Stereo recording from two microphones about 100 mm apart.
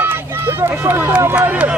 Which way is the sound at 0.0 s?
25° right (ahead or behind).